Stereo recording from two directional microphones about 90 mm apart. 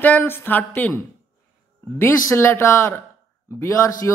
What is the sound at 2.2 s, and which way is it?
A man's voice, 40° left (ahead or behind).